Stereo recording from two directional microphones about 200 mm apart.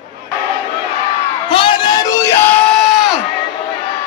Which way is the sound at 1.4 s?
25° left (ahead or behind).